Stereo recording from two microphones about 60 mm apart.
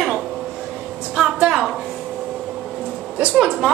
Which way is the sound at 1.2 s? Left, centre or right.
Centre.